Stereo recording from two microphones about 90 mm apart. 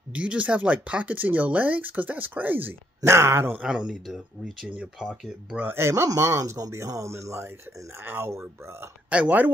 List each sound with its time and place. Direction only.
0.1 s speech: 15° right (ahead or behind)
3.6 s speech: 10° right (ahead or behind)
5.6 s speech: 25° right (ahead or behind)
9.1 s speech: 15° right (ahead or behind)